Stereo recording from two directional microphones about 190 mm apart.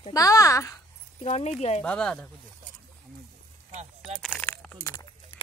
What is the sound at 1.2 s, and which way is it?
Speech, 35° left (ahead or behind).